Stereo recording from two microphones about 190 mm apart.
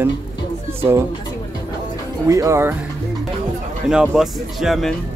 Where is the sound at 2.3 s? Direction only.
15° right (ahead or behind).